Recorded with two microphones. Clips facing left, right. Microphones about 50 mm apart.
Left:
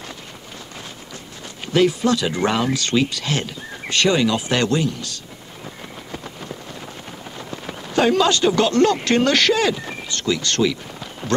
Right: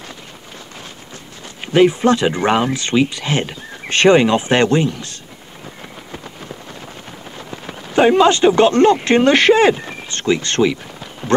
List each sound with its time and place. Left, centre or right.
1.6 s speech: right
7.9 s speech: right